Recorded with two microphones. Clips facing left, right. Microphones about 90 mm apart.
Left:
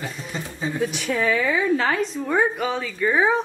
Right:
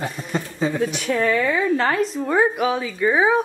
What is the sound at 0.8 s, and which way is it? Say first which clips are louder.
A woman's voice: right 2 dB; centre (ahead or behind).